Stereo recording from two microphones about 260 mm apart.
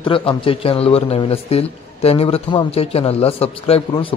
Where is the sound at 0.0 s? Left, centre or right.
Centre.